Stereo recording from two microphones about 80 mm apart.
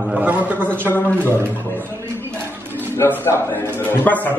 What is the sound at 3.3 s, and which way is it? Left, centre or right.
A man's voice, left.